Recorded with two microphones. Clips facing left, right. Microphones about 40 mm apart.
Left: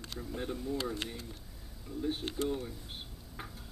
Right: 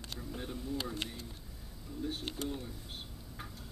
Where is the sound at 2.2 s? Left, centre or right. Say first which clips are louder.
Left 3 dB; left.